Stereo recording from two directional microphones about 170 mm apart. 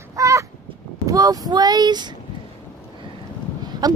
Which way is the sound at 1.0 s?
20° right (ahead or behind).